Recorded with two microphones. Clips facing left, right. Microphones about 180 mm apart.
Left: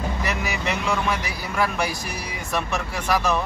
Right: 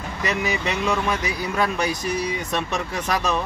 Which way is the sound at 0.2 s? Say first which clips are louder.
Right 2 dB; 20° right (ahead or behind).